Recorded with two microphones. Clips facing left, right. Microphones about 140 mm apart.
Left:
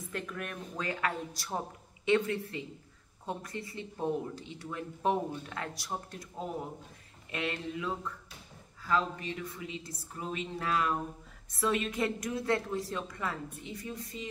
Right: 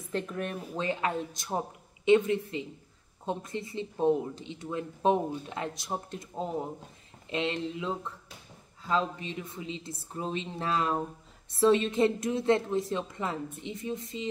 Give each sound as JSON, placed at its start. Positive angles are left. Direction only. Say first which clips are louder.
{"t": 0.1, "sound": "speech", "louder": "right 7 dB", "side_deg": -25}